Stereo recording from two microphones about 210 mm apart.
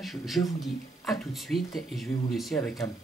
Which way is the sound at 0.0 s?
Centre (ahead or behind).